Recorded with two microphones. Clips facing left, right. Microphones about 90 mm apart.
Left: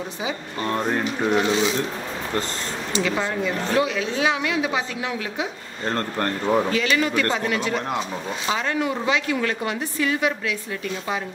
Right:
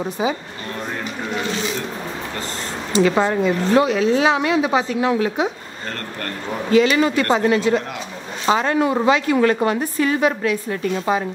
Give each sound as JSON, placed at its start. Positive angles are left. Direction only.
{"t": 3.0, "sound": "a woman's voice", "side_deg": -40}
{"t": 5.9, "sound": "speech", "side_deg": 30}
{"t": 6.7, "sound": "a woman's voice", "side_deg": -35}